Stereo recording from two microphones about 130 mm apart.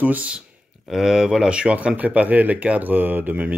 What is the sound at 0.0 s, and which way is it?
Speech, 10° right (ahead or behind).